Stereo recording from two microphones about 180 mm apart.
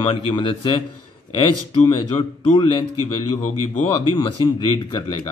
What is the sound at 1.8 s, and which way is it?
Speech, 25° left (ahead or behind).